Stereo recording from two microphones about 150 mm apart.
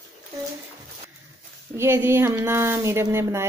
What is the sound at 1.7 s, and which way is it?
Speech, 15° right (ahead or behind).